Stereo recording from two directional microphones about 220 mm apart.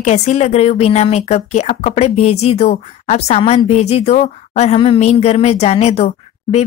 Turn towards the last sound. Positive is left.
turn(degrees=30)  # may be behind; listen again after turning